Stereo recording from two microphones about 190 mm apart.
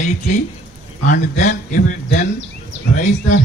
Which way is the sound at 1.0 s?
40° left (ahead or behind).